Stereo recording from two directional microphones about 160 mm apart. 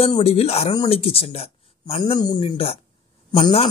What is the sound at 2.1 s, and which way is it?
Speech, 25° left (ahead or behind).